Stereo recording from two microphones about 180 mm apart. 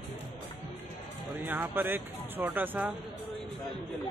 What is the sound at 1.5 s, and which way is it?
Speech, 10° right (ahead or behind).